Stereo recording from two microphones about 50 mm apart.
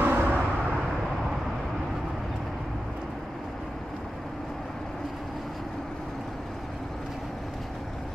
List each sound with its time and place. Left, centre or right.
0.0 s vehicle: right